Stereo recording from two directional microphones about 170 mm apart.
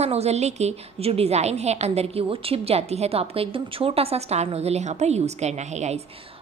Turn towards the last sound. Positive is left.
turn(degrees=-40)  # may be behind; listen again after turning